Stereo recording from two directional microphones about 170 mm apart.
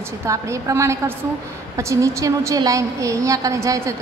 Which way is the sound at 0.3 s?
20° right (ahead or behind).